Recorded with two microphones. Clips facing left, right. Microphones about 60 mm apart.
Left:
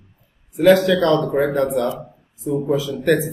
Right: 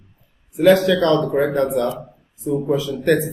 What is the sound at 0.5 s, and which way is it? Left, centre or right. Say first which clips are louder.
Speech: even; centre.